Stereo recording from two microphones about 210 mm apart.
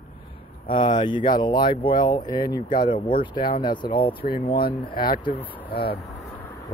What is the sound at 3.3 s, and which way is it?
Speech, 40° left (ahead or behind).